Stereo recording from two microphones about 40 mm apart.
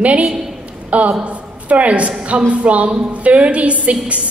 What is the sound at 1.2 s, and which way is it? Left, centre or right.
A woman's voice, right.